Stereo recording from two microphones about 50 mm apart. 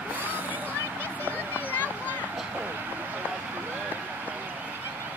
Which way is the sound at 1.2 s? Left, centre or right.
Left.